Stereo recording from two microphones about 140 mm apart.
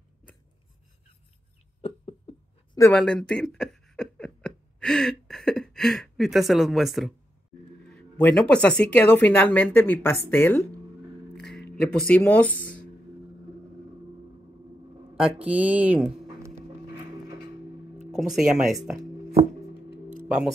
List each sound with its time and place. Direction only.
1.8 s a sound: 45° left (ahead or behind)
2.9 s speech: 5° left (ahead or behind)
11.3 s a sound: 5° left (ahead or behind)
12.3 s speech: 10° left (ahead or behind)
15.1 s speech: 10° right (ahead or behind)
18.1 s speech: 5° right (ahead or behind)